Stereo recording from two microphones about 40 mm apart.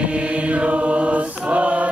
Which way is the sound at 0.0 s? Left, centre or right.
Right.